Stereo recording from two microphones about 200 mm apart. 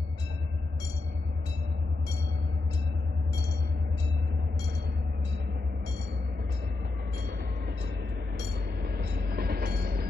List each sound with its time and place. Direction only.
8.4 s train: 55° right (ahead or behind)